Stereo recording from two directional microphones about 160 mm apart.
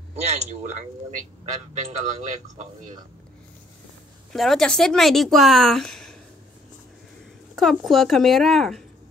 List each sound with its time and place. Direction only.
0.1 s a man's voice: 45° right (ahead or behind)
4.3 s speech: centre (ahead or behind)
7.5 s speech: centre (ahead or behind)